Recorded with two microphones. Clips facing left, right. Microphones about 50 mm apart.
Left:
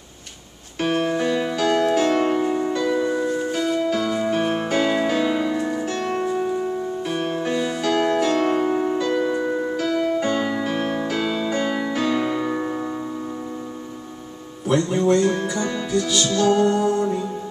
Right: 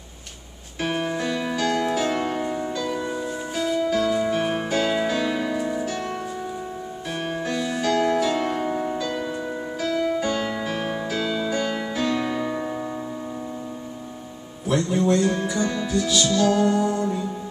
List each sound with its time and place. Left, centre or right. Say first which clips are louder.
0.7 s music: left 4 dB; centre
1.1 s music: left 4 dB; centre
1.6 s music: left 4 dB; centre
2.3 s music: left 5 dB; centre
3.3 s music: left 4 dB; centre
6.2 s music: left 8 dB; left
7.1 s music: left 2 dB; centre
7.4 s music: left 3 dB; left
7.8 s music: even; centre
14.7 s music: left 2 dB; centre